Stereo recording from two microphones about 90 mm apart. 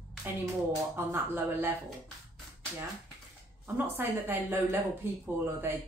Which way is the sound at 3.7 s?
25° right (ahead or behind).